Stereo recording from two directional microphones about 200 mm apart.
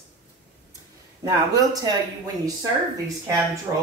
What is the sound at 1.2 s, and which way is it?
Speech, 20° right (ahead or behind).